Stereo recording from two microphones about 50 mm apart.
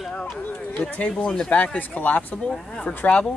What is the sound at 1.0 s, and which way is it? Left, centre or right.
Speech, left.